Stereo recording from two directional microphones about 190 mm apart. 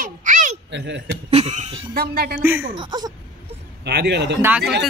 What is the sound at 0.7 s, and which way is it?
Speech, 70° right (ahead or behind).